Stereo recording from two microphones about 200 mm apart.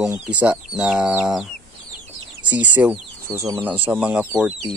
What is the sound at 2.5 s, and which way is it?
Speech, 10° right (ahead or behind).